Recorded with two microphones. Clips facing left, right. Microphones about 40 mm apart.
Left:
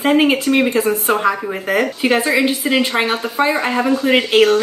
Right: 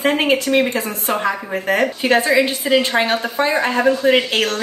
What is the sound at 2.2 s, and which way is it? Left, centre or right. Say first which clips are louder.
Speech: even; left.